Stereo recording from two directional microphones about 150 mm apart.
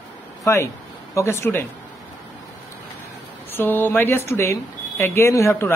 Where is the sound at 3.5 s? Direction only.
15° left (ahead or behind).